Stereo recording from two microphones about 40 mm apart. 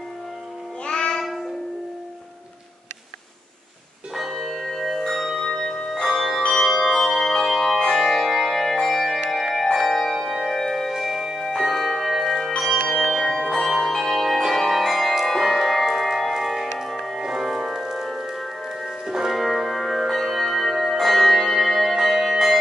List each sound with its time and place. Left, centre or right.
0.8 s child singing: left
4.1 s church bell: centre
5.1 s bell: centre
5.4 s music: centre
6.0 s bell: centre
6.5 s music: centre
7.2 s music: centre
10.9 s music: centre
11.6 s bell: centre
13.0 s change ringing: centre
15.2 s music: centre
17.1 s organ: centre
18.0 s music: centre
21.9 s church bell: centre